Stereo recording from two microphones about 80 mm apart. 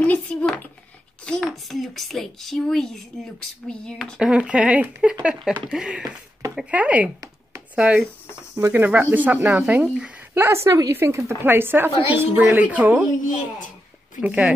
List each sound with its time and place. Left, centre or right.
0.0 s speech: centre
1.2 s speech: centre
4.2 s speech: centre
10.3 s a woman's voice: right
14.2 s speech: centre